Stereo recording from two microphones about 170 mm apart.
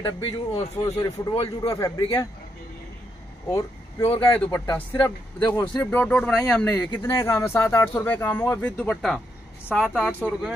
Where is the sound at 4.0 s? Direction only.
30° left (ahead or behind).